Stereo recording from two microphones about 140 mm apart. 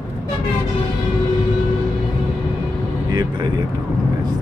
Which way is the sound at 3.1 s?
30° right (ahead or behind).